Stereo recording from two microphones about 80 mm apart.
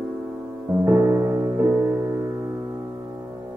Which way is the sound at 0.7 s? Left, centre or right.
Right.